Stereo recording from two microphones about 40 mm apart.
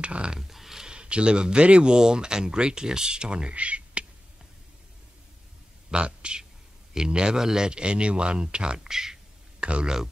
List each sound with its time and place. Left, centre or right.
0.0 s speech: right
0.4 s speech: centre
0.8 s speech: right
5.9 s speech: right
8.7 s speech: centre
9.6 s speech: right